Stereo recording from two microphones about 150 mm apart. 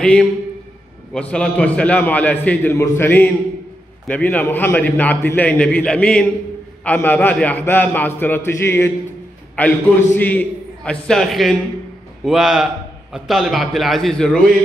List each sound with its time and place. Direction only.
0.0 s a man's voice: 5° left (ahead or behind)
1.3 s a man's voice: 5° left (ahead or behind)